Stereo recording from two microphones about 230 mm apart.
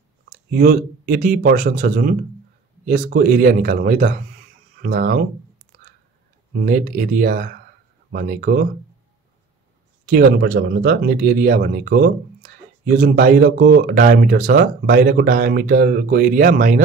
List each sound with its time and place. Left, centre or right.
0.5 s speech: right
6.6 s speech: right
10.0 s speech: right